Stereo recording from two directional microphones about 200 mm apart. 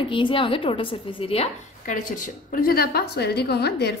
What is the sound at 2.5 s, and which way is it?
A woman's voice, 50° left (ahead or behind).